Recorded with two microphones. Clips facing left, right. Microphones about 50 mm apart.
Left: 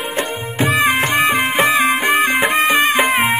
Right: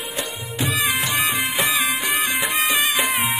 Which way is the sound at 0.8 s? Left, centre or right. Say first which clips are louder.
Left 7 dB; left.